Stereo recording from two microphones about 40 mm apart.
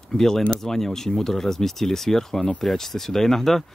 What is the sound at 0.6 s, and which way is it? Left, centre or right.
Speech, centre.